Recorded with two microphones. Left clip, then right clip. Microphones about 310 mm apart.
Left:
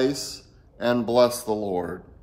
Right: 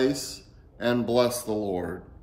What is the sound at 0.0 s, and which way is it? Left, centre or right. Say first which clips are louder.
A man's voice: left 1 dB; centre.